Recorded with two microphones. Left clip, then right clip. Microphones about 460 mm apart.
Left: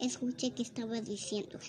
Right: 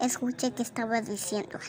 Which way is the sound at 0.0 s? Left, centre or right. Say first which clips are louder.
Right 7 dB; left.